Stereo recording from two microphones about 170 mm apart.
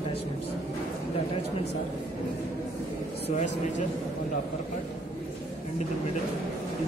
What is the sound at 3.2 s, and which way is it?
Speech, 45° left (ahead or behind).